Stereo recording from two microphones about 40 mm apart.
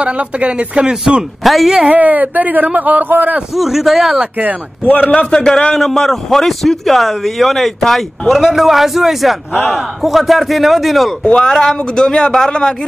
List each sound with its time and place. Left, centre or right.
0.0 s speech: right
1.4 s speech: centre
1.9 s speech: right
3.5 s speech: centre
4.8 s a man's voice: left
5.1 s speech: left
5.8 s speech: centre
11.7 s speech: left